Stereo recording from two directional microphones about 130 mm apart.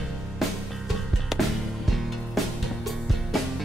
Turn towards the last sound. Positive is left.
turn(degrees=0)  # may be behind; listen again after turning